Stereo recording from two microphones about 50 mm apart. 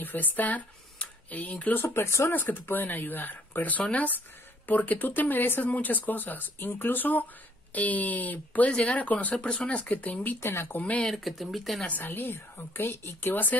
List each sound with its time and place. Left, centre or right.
0.0 s speech: left
2.0 s speech: left
2.3 s speech: left
10.4 s speech: left
11.1 s speech: centre
11.9 s a woman's voice: left